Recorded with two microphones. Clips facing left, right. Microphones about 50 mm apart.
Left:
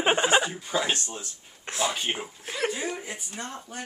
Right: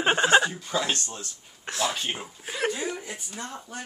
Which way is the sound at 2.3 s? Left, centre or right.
Centre.